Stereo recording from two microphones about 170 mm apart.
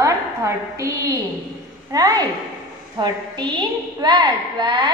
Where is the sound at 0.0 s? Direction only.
20° right (ahead or behind).